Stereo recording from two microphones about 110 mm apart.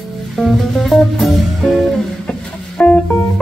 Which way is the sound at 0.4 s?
Centre (ahead or behind).